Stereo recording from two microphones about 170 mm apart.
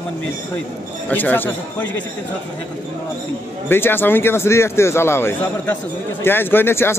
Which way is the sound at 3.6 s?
15° left (ahead or behind).